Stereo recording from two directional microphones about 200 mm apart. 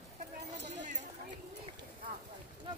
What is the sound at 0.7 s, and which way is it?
Clip-clop, 35° right (ahead or behind).